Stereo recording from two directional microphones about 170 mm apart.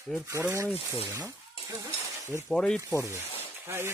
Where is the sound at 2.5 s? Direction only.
5° left (ahead or behind).